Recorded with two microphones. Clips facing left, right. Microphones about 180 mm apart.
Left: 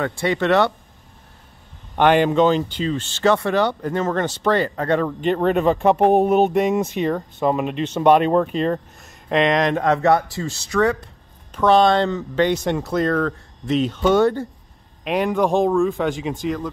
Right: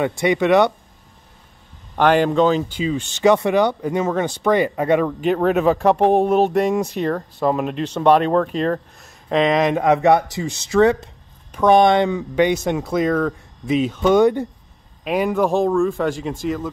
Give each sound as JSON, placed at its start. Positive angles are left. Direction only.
{"t": 0.0, "sound": "speech", "side_deg": -15}
{"t": 2.0, "sound": "speech", "side_deg": 0}
{"t": 15.0, "sound": "speech", "side_deg": -5}